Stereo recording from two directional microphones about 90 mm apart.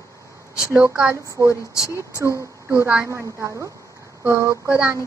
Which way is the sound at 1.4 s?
35° right (ahead or behind).